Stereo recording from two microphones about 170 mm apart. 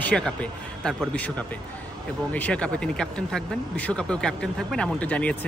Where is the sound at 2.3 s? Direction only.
5° left (ahead or behind).